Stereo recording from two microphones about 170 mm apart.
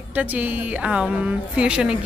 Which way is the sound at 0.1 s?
10° right (ahead or behind).